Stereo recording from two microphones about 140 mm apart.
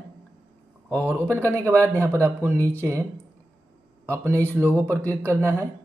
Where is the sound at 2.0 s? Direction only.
20° right (ahead or behind).